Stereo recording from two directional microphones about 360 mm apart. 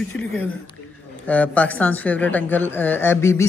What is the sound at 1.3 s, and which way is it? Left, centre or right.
A woman's voice, centre.